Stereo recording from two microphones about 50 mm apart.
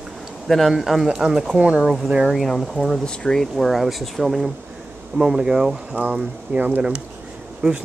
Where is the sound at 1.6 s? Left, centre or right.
Right.